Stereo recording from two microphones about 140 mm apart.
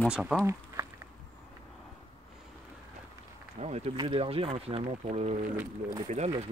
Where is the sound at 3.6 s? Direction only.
50° right (ahead or behind).